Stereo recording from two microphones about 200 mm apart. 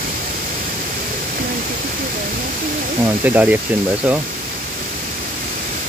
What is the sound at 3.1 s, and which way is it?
Insect, 10° right (ahead or behind).